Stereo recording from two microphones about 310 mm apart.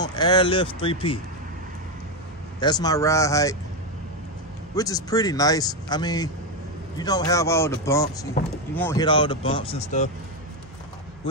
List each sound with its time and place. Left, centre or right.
0.0 s speech: centre
2.6 s speech: centre
4.7 s speech: centre